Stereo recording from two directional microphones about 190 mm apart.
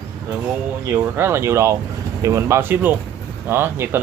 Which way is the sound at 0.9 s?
10° right (ahead or behind).